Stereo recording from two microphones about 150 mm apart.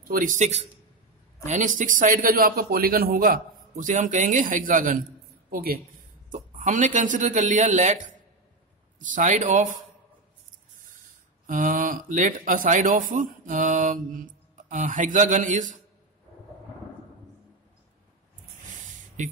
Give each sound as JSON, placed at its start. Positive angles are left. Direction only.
{"t": 0.1, "sound": "speech", "side_deg": -60}
{"t": 5.5, "sound": "a woman's voice", "side_deg": -80}
{"t": 6.3, "sound": "speech", "side_deg": -55}
{"t": 11.4, "sound": "speech", "side_deg": -65}
{"t": 18.7, "sound": "a sound", "side_deg": -55}